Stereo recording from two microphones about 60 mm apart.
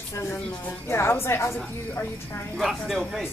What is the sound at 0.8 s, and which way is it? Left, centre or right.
Speech, left.